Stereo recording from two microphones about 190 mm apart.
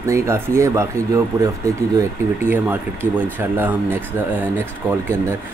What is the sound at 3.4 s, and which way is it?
Speech, 10° right (ahead or behind).